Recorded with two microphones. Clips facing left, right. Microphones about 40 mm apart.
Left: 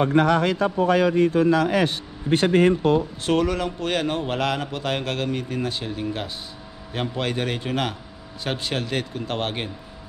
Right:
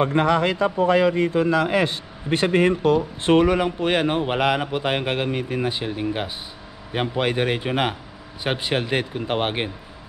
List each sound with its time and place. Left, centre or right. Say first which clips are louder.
0.0 s a man's voice: even; right
3.3 s speech: right 6 dB; right